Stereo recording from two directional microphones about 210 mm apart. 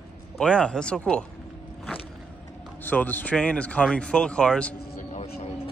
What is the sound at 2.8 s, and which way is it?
Speech, 10° left (ahead or behind).